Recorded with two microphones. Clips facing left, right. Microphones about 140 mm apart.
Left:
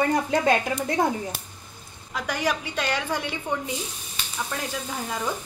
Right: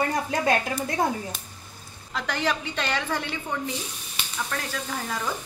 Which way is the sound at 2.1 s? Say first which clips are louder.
Left 1 dB; 10° left (ahead or behind).